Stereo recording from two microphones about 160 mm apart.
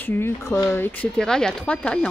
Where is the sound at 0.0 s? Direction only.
15° left (ahead or behind).